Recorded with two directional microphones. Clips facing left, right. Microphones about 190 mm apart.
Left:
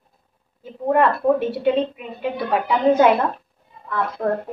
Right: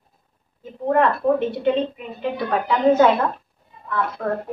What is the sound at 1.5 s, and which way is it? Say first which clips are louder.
A woman's voice: left 1 dB; 10° left (ahead or behind).